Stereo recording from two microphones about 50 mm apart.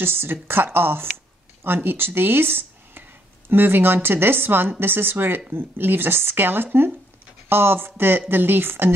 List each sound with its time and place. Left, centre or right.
0.0 s speech: right